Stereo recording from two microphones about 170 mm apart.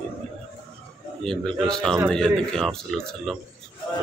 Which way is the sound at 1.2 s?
5° left (ahead or behind).